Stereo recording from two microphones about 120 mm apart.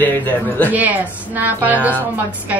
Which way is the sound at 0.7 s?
15° right (ahead or behind).